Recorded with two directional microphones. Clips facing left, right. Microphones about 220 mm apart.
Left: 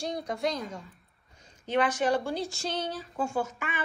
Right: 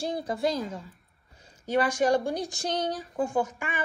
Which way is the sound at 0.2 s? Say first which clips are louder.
Right 3 dB; 5° right (ahead or behind).